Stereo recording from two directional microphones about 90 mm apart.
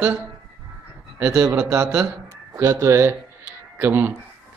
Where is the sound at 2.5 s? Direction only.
35° right (ahead or behind).